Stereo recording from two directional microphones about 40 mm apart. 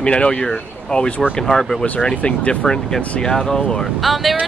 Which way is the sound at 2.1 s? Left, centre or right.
Left.